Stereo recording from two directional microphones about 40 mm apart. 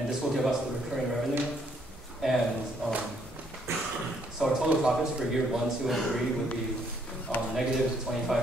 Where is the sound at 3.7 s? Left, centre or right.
Right.